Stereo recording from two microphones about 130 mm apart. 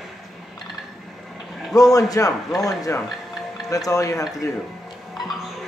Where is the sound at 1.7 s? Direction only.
25° left (ahead or behind).